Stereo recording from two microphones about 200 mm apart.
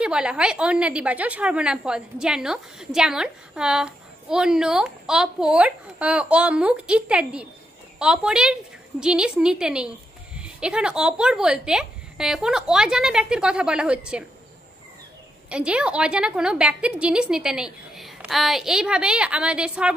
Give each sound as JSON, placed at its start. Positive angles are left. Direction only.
{"t": 0.0, "sound": "a woman's voice", "side_deg": -5}
{"t": 15.5, "sound": "a woman's voice", "side_deg": -5}